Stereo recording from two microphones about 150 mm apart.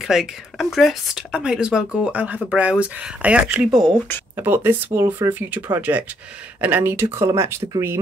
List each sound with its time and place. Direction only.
0.0 s speech: centre (ahead or behind)